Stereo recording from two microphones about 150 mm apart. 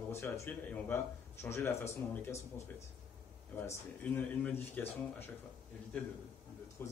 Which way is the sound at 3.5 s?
10° left (ahead or behind).